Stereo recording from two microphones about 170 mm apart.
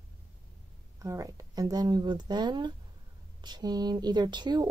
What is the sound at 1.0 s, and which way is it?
Speech, 20° right (ahead or behind).